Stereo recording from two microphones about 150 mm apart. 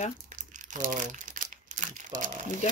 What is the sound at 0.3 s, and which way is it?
Crumpling, 55° right (ahead or behind).